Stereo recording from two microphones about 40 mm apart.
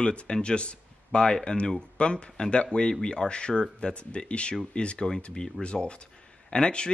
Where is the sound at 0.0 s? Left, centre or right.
Left.